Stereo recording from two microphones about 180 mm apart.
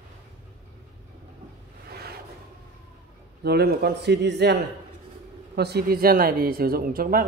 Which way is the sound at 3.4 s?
60° right (ahead or behind).